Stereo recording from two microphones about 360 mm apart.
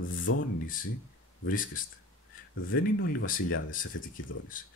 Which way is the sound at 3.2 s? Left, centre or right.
Left.